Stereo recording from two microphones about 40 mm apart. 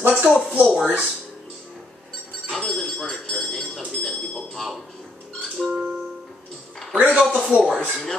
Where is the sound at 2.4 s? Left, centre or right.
Centre.